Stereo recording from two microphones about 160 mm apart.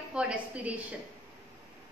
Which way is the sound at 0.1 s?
5° right (ahead or behind).